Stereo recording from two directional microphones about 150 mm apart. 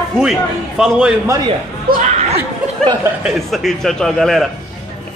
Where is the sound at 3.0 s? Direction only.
5° right (ahead or behind).